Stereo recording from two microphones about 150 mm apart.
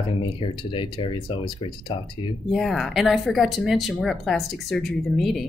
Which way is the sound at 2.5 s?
Centre (ahead or behind).